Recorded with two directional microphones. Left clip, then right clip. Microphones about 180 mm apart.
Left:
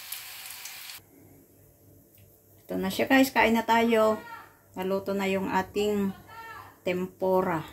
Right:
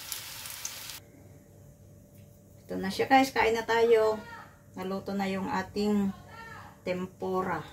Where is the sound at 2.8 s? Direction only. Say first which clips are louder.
Even; 35° left (ahead or behind).